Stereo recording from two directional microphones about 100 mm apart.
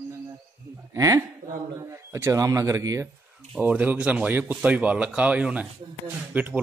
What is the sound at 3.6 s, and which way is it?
Speech, 15° right (ahead or behind).